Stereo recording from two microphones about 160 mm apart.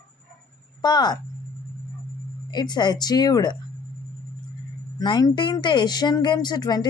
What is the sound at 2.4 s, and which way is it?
Speech, 25° left (ahead or behind).